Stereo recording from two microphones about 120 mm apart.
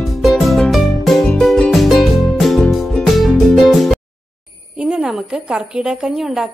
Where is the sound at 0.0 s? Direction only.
Centre (ahead or behind).